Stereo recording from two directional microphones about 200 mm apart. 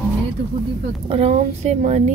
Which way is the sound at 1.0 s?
30° right (ahead or behind).